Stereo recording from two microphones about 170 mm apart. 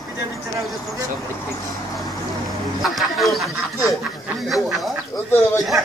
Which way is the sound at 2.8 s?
Centre (ahead or behind).